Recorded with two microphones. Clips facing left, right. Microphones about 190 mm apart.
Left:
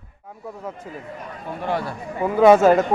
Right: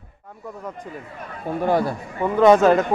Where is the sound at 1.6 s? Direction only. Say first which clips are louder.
Right 5 dB; 45° right (ahead or behind).